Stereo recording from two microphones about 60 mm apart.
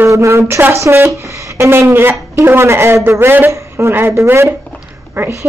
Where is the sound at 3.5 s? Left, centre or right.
Right.